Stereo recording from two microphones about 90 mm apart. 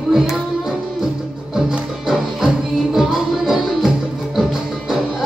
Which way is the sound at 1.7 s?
5° right (ahead or behind).